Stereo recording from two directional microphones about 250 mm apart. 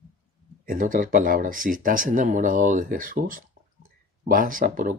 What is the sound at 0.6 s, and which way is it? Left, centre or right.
Speech, right.